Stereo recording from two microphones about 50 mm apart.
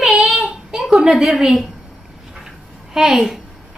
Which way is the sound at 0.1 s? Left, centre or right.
Centre.